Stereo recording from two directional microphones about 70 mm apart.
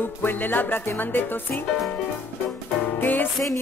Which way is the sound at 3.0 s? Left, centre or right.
Left.